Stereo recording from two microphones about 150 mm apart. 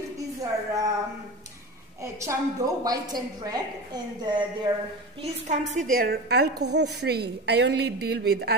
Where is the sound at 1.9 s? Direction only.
20° right (ahead or behind).